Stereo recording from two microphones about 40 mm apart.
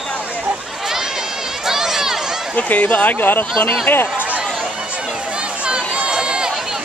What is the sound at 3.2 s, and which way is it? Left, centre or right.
Speech, left.